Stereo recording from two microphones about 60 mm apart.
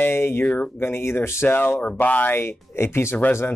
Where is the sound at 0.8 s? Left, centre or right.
Left.